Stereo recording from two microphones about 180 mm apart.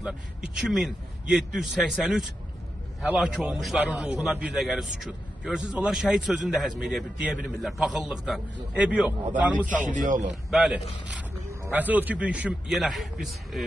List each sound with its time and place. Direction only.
0.0 s a man's voice: 5° right (ahead or behind)
9.9 s a man's voice: 45° right (ahead or behind)
10.5 s a man's voice: 5° right (ahead or behind)